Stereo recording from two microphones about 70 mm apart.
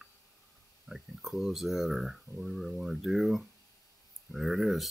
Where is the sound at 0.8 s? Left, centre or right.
Centre.